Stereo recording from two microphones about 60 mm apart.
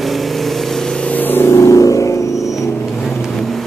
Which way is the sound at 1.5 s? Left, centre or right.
Left.